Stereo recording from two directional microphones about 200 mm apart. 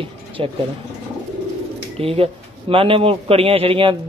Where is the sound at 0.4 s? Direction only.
25° right (ahead or behind).